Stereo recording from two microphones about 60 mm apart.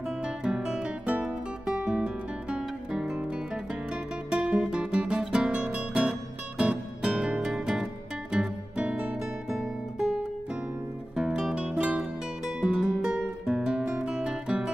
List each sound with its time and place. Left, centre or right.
0.2 s guitar: centre
1.2 s music: centre
4.3 s guitar: centre
5.5 s music: centre
11.1 s music: centre
13.5 s guitar: centre
13.9 s music: centre